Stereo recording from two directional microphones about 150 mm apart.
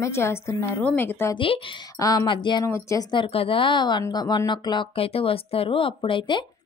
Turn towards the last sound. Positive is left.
turn(degrees=35)  # may be behind; listen again after turning